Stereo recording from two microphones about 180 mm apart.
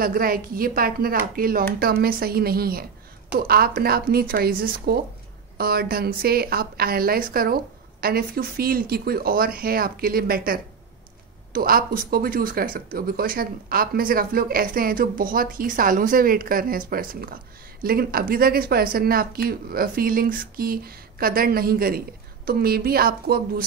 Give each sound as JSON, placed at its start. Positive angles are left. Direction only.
{"t": 0.0, "sound": "speech", "side_deg": -55}